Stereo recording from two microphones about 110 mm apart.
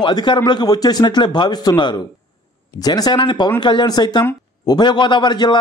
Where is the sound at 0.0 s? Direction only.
45° left (ahead or behind).